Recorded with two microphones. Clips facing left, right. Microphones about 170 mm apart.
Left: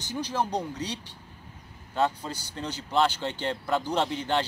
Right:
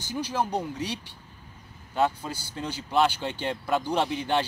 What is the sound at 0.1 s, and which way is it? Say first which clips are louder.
Speech: right 1 dB; 10° right (ahead or behind).